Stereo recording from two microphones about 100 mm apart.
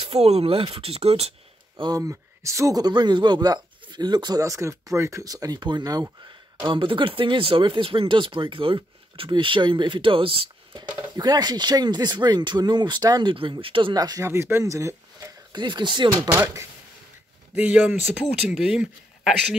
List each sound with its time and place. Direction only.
0.1 s speech: 90° right
2.0 s a man's voice: 30° right (ahead or behind)
5.6 s speech: 50° right (ahead or behind)
6.7 s speech: 55° right (ahead or behind)
13.3 s speech: 60° right (ahead or behind)
13.9 s a man's voice: 40° right (ahead or behind)
14.2 s speech: 25° right (ahead or behind)
15.5 s speech: 50° right (ahead or behind)
16.3 s speech: 30° right (ahead or behind)
17.6 s speech: 15° right (ahead or behind)